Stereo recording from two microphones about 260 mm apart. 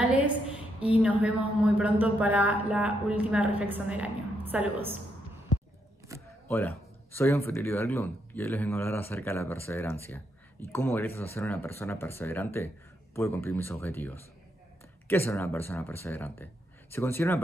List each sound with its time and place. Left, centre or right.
0.0 s a sound: centre
0.7 s a woman's voice: centre
6.4 s speech: centre